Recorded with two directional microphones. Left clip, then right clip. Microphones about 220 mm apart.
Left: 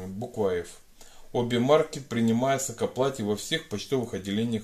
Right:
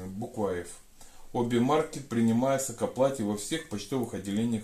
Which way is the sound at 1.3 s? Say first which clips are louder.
Left 4 dB; 40° left (ahead or behind).